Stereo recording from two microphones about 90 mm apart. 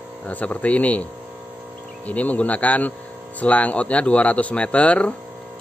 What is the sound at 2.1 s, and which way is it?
Speech, 15° left (ahead or behind).